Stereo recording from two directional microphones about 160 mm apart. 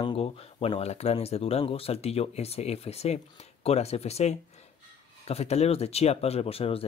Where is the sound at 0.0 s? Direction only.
35° left (ahead or behind).